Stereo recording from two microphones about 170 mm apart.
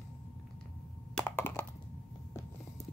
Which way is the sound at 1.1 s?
10° left (ahead or behind).